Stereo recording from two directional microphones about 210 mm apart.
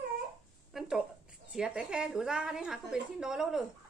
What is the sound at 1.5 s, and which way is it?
A woman's voice, 5° right (ahead or behind).